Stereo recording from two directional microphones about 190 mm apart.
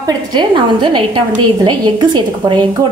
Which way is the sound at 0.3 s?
25° right (ahead or behind).